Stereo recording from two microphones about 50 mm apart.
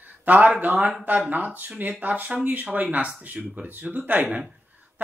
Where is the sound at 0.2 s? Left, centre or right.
Right.